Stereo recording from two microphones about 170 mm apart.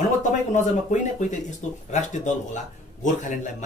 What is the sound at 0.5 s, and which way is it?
Speech, 45° left (ahead or behind).